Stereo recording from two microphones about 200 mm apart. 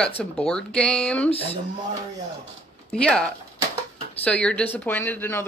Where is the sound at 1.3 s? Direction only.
30° left (ahead or behind).